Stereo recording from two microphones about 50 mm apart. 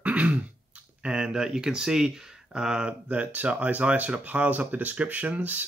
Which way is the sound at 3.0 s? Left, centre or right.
Right.